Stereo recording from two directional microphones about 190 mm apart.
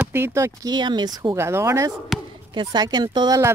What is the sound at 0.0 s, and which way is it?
Speech, 10° right (ahead or behind).